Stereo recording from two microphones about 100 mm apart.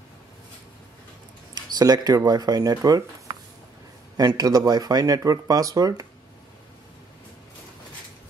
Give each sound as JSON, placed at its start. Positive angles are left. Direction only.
{"t": 1.5, "sound": "speech", "side_deg": -40}
{"t": 4.2, "sound": "speech", "side_deg": -40}